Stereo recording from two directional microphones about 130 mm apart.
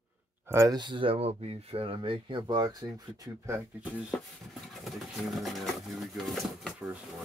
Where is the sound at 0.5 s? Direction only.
20° right (ahead or behind).